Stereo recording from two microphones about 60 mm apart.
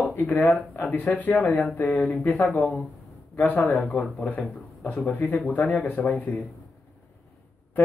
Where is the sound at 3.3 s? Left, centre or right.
Left.